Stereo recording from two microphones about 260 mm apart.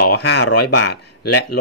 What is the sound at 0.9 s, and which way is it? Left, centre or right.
Speech, left.